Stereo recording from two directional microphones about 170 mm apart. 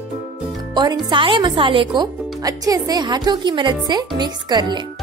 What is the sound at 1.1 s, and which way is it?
Speech, 30° right (ahead or behind).